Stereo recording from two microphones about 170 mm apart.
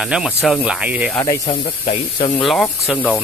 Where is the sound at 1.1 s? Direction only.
20° left (ahead or behind).